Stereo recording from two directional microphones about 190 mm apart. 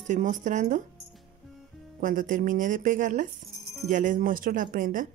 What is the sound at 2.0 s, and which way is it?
Speech, 45° right (ahead or behind).